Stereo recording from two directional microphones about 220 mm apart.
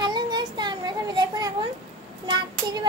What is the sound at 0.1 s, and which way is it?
Child singing, 20° right (ahead or behind).